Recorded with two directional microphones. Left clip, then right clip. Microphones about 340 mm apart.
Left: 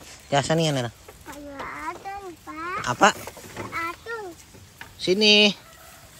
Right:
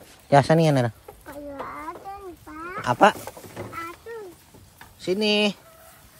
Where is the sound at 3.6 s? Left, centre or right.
Right.